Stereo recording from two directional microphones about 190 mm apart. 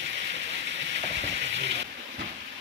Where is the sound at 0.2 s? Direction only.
70° right (ahead or behind).